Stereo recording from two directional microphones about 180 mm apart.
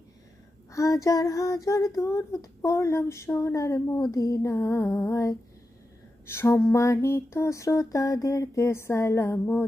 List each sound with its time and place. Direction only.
0.7 s female singing: 15° left (ahead or behind)